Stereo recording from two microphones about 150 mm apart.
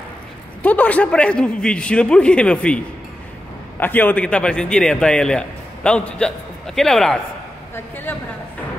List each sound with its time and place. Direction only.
0.6 s a man's voice: 10° left (ahead or behind)
3.8 s a man's voice: 10° left (ahead or behind)